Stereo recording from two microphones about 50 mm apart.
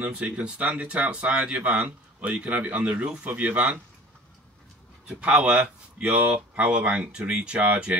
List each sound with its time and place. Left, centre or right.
0.0 s speech: right
5.0 s speech: centre